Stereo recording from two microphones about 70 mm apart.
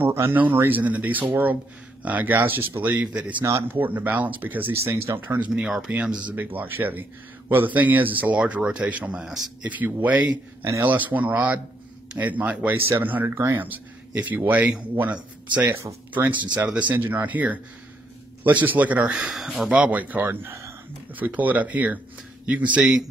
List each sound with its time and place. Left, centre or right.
0.0 s a sound: right
0.7 s speech: right
5.5 s speech: centre
6.3 s speech: right; by 9.5 s centre
9.6 s speech: right
13.6 s speech: right
19.3 s speech: centre
19.8 s speech: right